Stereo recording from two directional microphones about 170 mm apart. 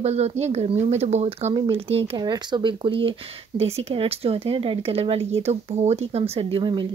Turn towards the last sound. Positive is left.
turn(degrees=-25)  # may be behind; listen again after turning